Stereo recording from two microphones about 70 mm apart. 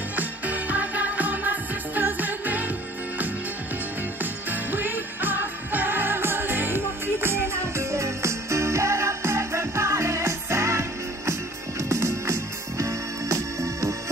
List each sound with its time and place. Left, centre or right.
0.1 s music: right
4.2 s music: right